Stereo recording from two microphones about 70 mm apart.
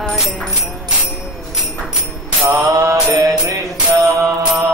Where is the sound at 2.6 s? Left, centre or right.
Right.